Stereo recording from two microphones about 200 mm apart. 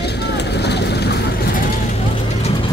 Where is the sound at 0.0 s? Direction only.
55° left (ahead or behind).